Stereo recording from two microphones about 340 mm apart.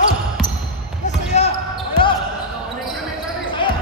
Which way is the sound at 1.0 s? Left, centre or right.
Centre.